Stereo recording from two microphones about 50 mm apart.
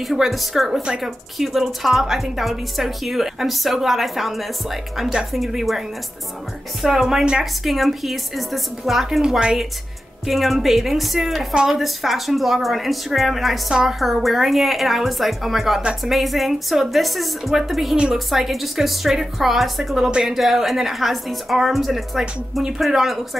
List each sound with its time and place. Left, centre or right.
0.0 s a woman's voice: centre
0.8 s a woman's voice: centre
9.2 s speech: centre
10.2 s a woman's voice: centre